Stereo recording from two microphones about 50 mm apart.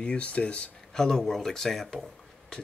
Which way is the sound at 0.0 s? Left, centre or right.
Left.